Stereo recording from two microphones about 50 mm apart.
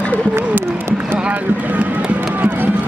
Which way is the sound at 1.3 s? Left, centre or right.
Right.